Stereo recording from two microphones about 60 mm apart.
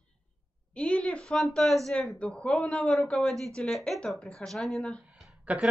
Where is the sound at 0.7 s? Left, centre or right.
Centre.